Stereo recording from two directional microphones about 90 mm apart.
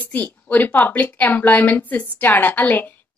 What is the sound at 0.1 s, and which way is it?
A woman's voice, 20° left (ahead or behind).